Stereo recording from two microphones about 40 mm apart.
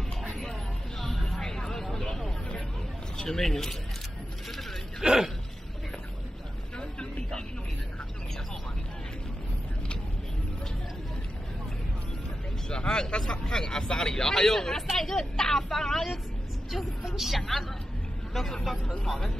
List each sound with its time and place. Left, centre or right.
1.0 s a sound: centre
1.9 s vehicle: centre
3.2 s speech: centre
5.0 s speech: centre
6.8 s vehicle: left
12.6 s vehicle: left
15.0 s speech: centre
16.7 s a woman's voice: centre
18.3 s speech: centre